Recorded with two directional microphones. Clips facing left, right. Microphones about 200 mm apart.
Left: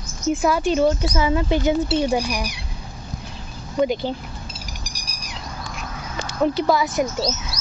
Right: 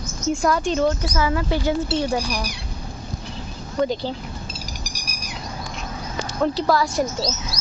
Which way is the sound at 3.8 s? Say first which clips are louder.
Left 2 dB; 15° left (ahead or behind).